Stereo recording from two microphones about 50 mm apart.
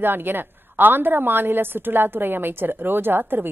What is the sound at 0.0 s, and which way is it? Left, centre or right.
A woman's voice, right.